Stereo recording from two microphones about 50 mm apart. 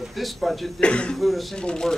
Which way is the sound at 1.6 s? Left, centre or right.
Centre.